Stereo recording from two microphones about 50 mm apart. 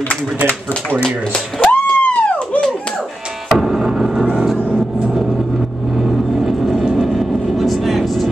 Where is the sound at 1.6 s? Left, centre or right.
Left.